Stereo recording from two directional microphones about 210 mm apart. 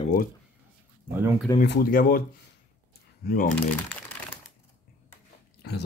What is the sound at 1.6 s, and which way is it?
Speech, 45° left (ahead or behind).